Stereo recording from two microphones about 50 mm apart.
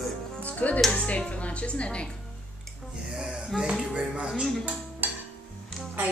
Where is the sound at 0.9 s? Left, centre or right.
Left.